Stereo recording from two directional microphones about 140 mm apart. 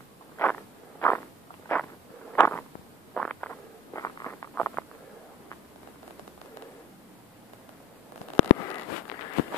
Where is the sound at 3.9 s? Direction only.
20° left (ahead or behind).